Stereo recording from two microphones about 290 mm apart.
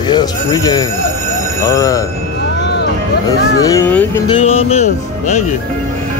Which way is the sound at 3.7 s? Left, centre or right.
Centre.